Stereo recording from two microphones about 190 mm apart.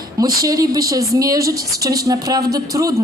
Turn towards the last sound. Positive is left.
turn(degrees=-15)  # may be behind; listen again after turning